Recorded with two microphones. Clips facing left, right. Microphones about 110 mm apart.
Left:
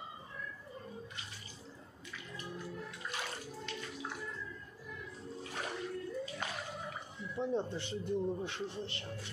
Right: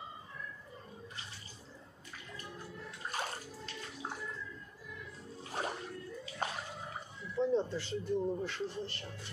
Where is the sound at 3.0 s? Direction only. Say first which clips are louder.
Right 6 dB; 40° right (ahead or behind).